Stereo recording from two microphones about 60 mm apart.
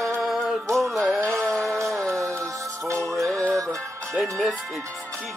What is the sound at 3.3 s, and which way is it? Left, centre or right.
Music, centre.